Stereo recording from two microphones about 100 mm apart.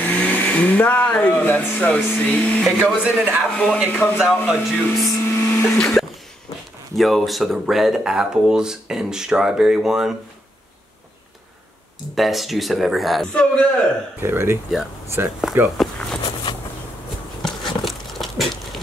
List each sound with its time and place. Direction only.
0.0 s speech: 15° left (ahead or behind)
3.0 s a man's voice: 15° right (ahead or behind)
3.5 s a man's voice: 10° left (ahead or behind)
4.5 s speech: 5° right (ahead or behind)
5.0 s a sound: 25° left (ahead or behind)
5.8 s a man's voice: 10° left (ahead or behind)
12.2 s a man's voice: centre (ahead or behind)
14.2 s speech: 25° right (ahead or behind)
15.8 s speech: 5° left (ahead or behind)
17.4 s a sound: 5° left (ahead or behind)